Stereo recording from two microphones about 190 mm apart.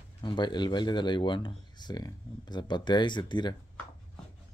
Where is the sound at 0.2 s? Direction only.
25° left (ahead or behind).